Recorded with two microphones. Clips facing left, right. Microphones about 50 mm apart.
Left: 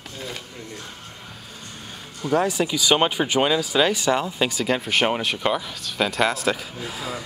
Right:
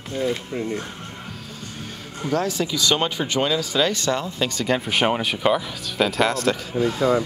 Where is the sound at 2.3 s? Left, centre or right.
Centre.